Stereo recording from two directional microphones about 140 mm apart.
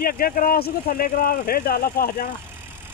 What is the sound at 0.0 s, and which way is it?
Speech, 90° left.